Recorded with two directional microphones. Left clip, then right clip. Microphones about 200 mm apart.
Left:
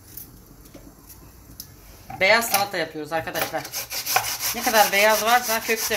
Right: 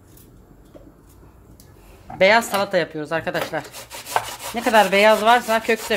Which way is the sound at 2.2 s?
55° right (ahead or behind).